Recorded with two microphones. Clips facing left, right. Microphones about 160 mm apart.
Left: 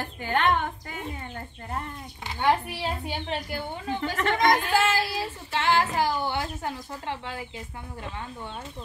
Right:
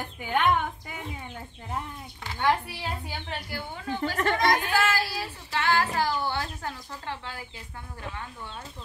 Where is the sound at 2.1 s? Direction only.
20° left (ahead or behind).